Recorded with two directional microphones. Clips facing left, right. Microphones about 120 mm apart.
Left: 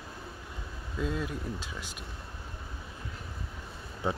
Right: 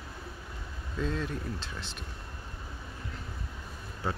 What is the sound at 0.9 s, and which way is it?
Speech, 10° left (ahead or behind).